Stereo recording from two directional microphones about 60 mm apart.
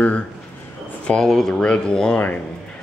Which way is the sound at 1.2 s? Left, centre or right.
Centre.